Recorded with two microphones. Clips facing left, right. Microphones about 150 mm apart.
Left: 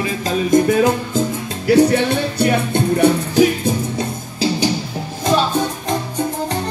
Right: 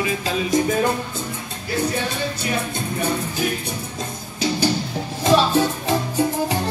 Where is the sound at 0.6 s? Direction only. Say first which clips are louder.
Left 5 dB; 80° left.